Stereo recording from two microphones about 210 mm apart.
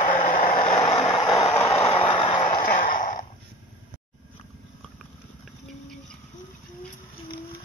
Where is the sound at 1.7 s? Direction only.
25° left (ahead or behind).